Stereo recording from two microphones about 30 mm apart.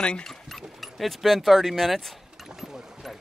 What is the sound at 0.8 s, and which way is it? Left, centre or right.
Speech, centre.